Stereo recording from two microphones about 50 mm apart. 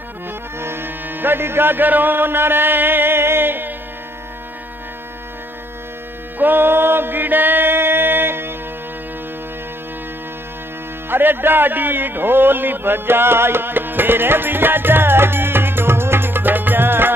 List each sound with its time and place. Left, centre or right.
0.6 s music: right
6.3 s chant: right
11.1 s speech: right